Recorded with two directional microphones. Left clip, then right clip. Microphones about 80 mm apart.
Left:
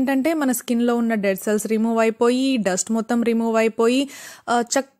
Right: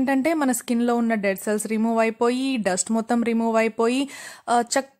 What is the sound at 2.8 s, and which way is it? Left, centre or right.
A woman's voice, centre.